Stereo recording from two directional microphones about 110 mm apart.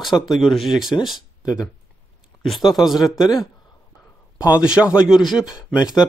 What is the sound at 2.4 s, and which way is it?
Speech, centre (ahead or behind).